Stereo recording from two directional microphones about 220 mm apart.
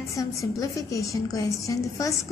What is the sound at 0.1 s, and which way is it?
A woman's voice, 15° left (ahead or behind).